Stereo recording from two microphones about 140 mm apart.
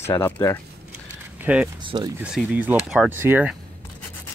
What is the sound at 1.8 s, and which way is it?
Speech, 35° right (ahead or behind).